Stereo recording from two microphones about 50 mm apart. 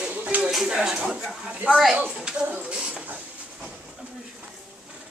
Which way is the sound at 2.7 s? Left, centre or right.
Right.